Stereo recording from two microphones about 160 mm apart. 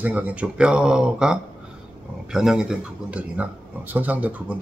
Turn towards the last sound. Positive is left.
turn(degrees=-10)  # may be behind; listen again after turning